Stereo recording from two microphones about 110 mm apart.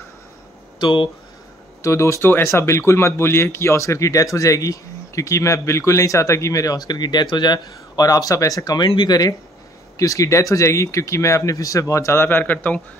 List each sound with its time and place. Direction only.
0.7 s speech: 50° left (ahead or behind)
1.8 s speech: 30° left (ahead or behind)